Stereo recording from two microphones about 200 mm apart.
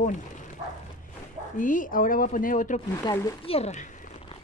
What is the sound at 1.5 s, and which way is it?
Speech, 40° left (ahead or behind).